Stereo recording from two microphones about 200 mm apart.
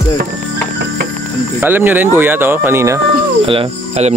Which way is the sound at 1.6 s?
10° right (ahead or behind).